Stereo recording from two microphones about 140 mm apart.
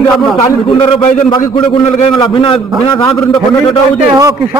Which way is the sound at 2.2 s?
35° left (ahead or behind).